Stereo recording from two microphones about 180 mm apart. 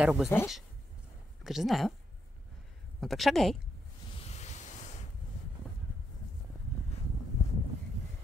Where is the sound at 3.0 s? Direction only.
Centre (ahead or behind).